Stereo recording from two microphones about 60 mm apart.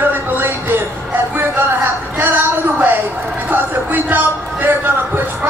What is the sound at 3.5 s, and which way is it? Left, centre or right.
Speech, right.